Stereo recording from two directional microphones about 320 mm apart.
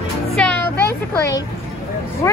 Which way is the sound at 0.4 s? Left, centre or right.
Centre.